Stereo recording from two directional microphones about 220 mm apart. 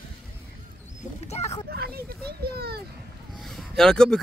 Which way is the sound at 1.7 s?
45° right (ahead or behind).